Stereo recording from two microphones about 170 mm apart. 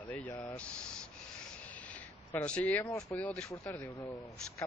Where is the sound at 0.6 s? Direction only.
5° left (ahead or behind).